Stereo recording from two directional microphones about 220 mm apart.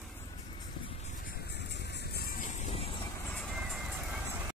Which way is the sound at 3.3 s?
Centre (ahead or behind).